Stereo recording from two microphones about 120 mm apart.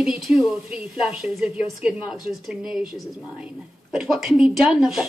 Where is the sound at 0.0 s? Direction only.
5° right (ahead or behind).